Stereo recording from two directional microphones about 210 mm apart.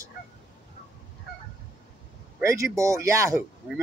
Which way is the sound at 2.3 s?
15° right (ahead or behind).